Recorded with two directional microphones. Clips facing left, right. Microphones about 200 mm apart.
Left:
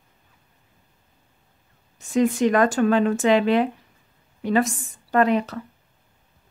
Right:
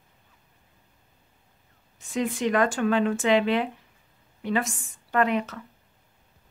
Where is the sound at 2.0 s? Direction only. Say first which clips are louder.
Left 8 dB; 45° left (ahead or behind).